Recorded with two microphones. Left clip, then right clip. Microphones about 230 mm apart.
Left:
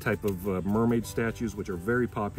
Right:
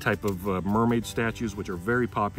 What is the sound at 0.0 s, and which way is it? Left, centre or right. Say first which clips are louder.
Speech: right 2 dB; centre.